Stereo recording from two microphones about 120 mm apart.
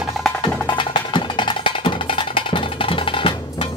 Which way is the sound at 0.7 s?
40° left (ahead or behind).